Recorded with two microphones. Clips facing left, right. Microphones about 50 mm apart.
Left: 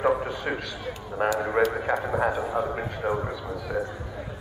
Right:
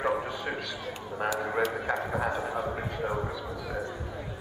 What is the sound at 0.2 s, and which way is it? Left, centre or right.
A man's voice, centre.